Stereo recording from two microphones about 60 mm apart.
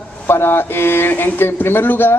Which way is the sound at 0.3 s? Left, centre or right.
Left.